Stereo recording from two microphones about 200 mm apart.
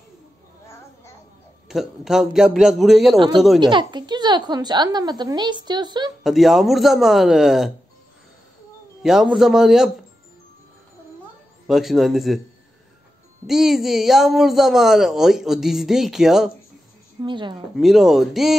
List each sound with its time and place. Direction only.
1.7 s speech: centre (ahead or behind)
3.6 s a woman's voice: 20° right (ahead or behind)
6.2 s speech: centre (ahead or behind)
9.0 s speech: centre (ahead or behind)
11.6 s speech: centre (ahead or behind)
13.5 s speech: centre (ahead or behind)
17.2 s a woman's voice: 25° right (ahead or behind)
17.7 s speech: centre (ahead or behind)